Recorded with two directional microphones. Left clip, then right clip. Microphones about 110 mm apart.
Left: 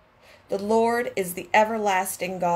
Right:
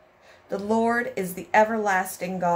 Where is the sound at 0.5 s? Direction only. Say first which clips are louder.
Left 2 dB; 45° left (ahead or behind).